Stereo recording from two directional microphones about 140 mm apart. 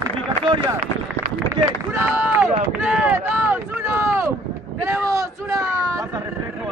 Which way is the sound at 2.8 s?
10° right (ahead or behind).